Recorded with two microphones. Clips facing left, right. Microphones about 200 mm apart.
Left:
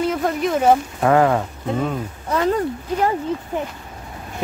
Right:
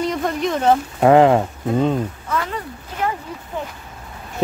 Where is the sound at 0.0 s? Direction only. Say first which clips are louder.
Left 1 dB; 5° left (ahead or behind).